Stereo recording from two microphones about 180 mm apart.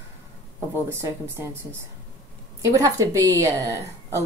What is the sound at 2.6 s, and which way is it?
A woman's voice, 20° right (ahead or behind).